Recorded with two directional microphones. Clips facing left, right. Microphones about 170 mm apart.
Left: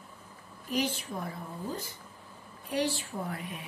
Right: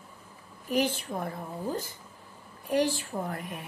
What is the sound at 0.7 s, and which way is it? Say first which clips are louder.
Speech: right 4 dB; 55° right (ahead or behind).